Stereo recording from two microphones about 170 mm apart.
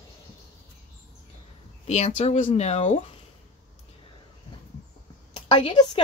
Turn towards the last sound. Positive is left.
turn(degrees=30)  # may be behind; listen again after turning